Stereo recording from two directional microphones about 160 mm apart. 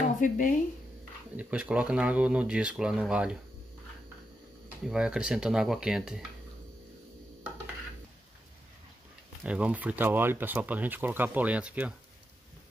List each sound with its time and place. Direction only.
0.2 s speech: 55° left (ahead or behind)
1.3 s speech: 10° right (ahead or behind)
4.8 s speech: 5° right (ahead or behind)
9.4 s speech: 10° right (ahead or behind)